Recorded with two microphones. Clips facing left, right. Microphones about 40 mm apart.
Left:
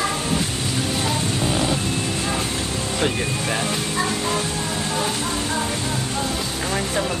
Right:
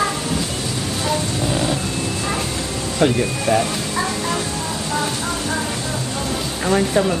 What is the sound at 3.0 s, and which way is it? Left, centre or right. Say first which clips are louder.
Speech: right 7 dB; centre.